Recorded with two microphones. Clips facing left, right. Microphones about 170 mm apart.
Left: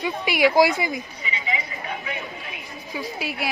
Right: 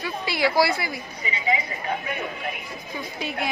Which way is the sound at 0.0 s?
15° left (ahead or behind).